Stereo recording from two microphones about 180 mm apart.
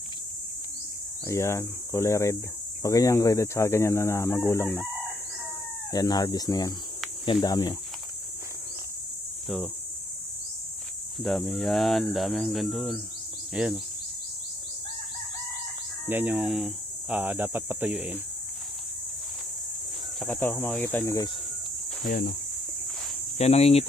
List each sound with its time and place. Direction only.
1.2 s speech: 15° left (ahead or behind)
5.9 s speech: 20° left (ahead or behind)
11.1 s speech: centre (ahead or behind)
16.1 s speech: 10° right (ahead or behind)
20.2 s speech: 5° left (ahead or behind)
22.0 s speech: 60° left (ahead or behind)
23.3 s speech: 35° left (ahead or behind)